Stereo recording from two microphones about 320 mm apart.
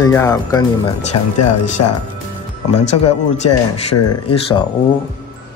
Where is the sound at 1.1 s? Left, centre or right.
Left.